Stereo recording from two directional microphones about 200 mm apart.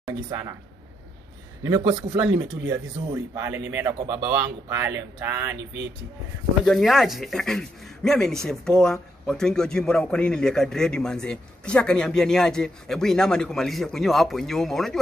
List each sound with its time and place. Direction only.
1.8 s speech: 30° right (ahead or behind)
2.6 s a man's voice: 15° right (ahead or behind)
6.6 s speech: centre (ahead or behind)